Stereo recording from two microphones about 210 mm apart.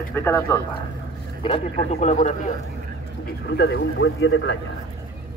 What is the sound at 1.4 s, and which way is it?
Speech, 25° left (ahead or behind).